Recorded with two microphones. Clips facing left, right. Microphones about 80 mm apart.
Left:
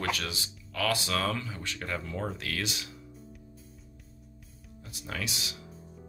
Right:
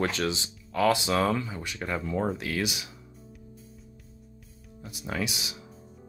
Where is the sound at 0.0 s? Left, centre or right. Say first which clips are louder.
Right 5 dB; right.